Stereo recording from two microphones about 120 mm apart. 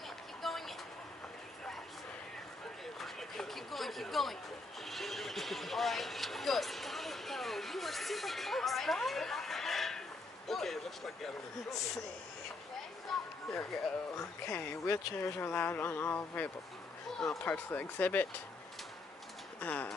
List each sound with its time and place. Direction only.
0.4 s vehicle: centre (ahead or behind)
3.0 s a sound: centre (ahead or behind)
4.8 s vehicle: centre (ahead or behind)
10.5 s speech: centre (ahead or behind)
13.1 s a sound: 5° left (ahead or behind)
14.1 s speech: 25° left (ahead or behind)
19.6 s speech: 15° left (ahead or behind)